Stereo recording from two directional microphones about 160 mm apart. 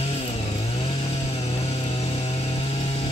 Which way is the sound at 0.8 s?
40° left (ahead or behind).